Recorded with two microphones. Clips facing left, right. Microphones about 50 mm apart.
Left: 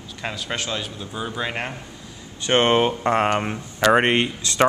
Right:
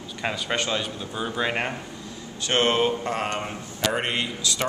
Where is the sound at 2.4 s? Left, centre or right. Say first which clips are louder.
Left 4 dB; left.